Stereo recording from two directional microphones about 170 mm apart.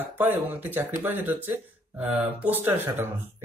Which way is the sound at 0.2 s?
10° right (ahead or behind).